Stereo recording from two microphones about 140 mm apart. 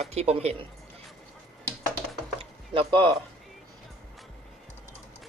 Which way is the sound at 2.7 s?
40° right (ahead or behind).